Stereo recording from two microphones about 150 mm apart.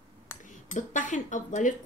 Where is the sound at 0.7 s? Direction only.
55° left (ahead or behind).